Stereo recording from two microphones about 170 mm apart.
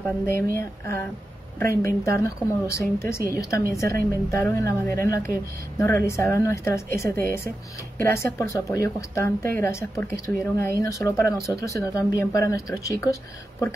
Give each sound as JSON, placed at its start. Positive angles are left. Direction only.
{"t": 0.3, "sound": "speech", "side_deg": 15}